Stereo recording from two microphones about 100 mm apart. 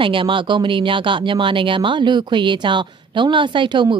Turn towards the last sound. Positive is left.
turn(degrees=-55)  # may be behind; listen again after turning